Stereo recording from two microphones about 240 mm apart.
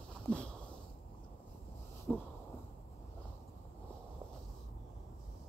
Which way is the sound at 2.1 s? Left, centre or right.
Centre.